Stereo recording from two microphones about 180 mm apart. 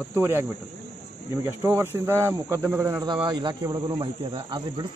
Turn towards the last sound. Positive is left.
turn(degrees=-30)  # may be behind; listen again after turning